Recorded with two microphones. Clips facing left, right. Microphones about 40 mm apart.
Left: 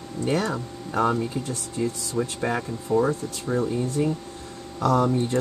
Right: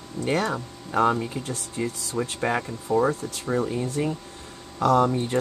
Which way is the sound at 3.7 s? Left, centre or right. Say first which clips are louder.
Left 2 dB; right.